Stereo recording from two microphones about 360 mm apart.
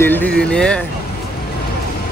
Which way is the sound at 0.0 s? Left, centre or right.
Centre.